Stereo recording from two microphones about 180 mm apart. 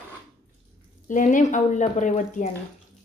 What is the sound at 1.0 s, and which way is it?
A woman's voice, 45° left (ahead or behind).